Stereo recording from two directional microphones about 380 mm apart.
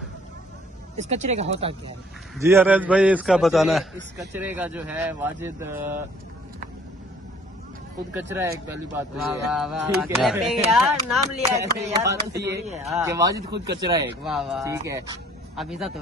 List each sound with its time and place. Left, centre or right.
0.9 s speech: centre
2.4 s speech: centre
8.1 s speech: centre
14.2 s speech: centre